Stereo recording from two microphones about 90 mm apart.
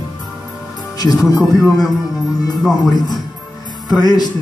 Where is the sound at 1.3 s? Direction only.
40° left (ahead or behind).